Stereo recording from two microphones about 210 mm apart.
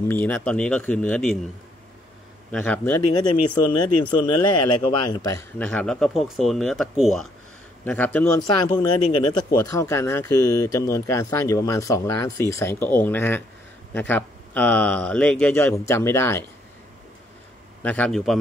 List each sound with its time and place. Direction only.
0.1 s speech: 10° left (ahead or behind)
2.5 s speech: 5° left (ahead or behind)
3.2 s speech: 20° left (ahead or behind)
5.6 s speech: 5° left (ahead or behind)
9.0 s speech: 25° left (ahead or behind)
9.6 s speech: 15° left (ahead or behind)
17.8 s speech: 5° left (ahead or behind)